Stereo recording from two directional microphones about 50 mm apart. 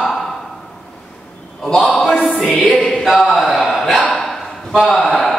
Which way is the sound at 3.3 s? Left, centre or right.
Centre.